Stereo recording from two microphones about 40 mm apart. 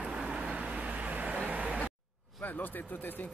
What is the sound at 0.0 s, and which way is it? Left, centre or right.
Vehicle, right.